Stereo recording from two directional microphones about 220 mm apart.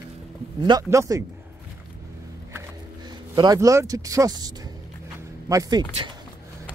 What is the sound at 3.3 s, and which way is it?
Speech, 15° right (ahead or behind).